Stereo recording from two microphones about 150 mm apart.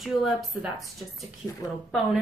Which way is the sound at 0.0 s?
Centre (ahead or behind).